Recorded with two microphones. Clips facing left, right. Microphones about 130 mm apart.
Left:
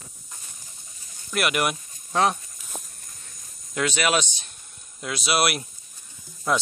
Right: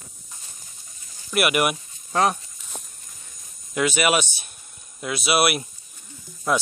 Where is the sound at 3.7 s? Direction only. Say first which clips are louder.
Right 3 dB; 5° right (ahead or behind).